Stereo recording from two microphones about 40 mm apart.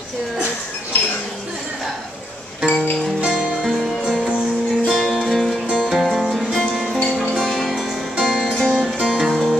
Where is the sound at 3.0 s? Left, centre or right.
Centre.